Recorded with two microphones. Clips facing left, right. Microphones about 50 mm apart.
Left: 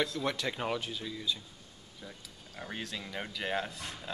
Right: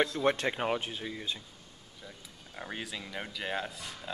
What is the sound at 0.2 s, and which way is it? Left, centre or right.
Speech, right.